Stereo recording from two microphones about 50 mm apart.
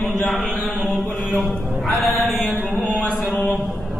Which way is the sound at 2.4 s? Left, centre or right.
Left.